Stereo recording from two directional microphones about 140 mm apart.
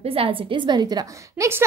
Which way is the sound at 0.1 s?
40° right (ahead or behind).